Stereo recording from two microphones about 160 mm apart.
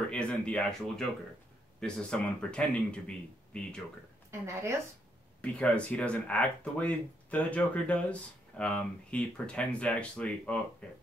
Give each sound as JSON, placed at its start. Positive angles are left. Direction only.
{"t": 0.1, "sound": "speech", "side_deg": 5}
{"t": 4.3, "sound": "a woman's voice", "side_deg": -20}
{"t": 5.4, "sound": "speech", "side_deg": 10}